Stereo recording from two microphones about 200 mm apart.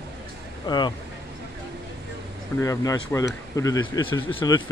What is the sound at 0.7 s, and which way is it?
Speech, 20° left (ahead or behind).